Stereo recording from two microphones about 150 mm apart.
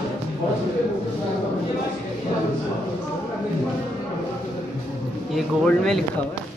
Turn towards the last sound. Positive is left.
turn(degrees=0)  # may be behind; listen again after turning